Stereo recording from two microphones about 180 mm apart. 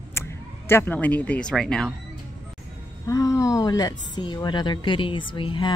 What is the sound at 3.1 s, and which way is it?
Speech, 20° left (ahead or behind).